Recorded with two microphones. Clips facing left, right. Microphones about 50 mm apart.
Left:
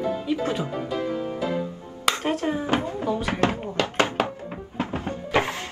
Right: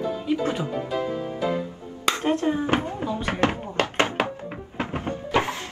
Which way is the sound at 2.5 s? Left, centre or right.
Right.